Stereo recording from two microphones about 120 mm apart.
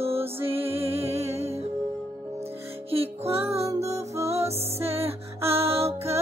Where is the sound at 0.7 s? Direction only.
55° right (ahead or behind).